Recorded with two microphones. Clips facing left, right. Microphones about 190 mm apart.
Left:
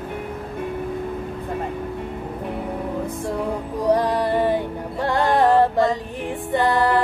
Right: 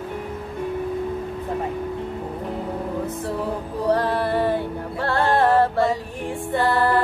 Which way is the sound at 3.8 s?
15° left (ahead or behind).